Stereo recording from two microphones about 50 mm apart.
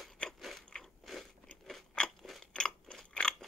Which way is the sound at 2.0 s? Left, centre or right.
Centre.